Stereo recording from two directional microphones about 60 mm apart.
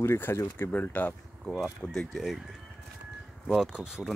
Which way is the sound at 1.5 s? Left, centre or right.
Centre.